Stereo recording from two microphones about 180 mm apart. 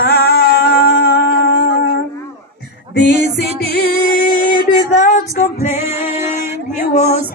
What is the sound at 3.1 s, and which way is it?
Music, 35° right (ahead or behind).